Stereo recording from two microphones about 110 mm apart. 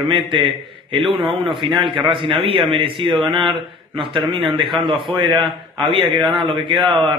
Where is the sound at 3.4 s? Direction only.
50° right (ahead or behind).